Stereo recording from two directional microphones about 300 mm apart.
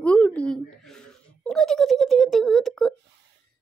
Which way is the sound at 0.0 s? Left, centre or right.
Centre.